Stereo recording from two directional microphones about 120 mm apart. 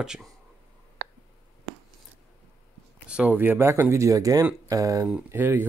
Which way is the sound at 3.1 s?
10° right (ahead or behind).